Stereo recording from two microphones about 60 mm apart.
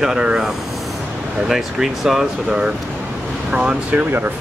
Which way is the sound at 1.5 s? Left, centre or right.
Centre.